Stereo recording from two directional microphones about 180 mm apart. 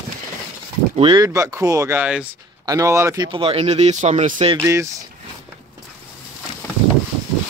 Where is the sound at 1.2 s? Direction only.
15° right (ahead or behind).